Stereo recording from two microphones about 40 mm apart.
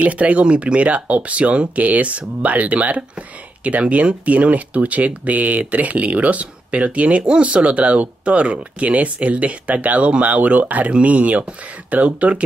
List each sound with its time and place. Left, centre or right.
0.0 s speech: right